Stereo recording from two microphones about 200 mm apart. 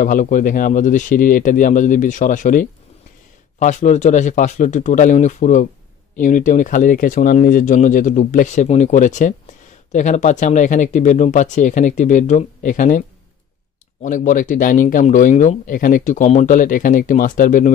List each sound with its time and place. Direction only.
0.0 s speech: 40° left (ahead or behind)
14.0 s speech: 40° left (ahead or behind)